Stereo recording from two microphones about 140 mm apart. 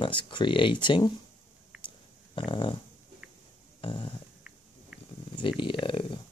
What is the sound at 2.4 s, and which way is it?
Speech, 35° left (ahead or behind).